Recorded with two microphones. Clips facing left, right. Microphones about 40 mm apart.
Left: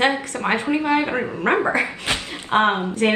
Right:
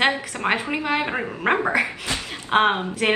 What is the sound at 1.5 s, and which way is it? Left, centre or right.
Speech, right.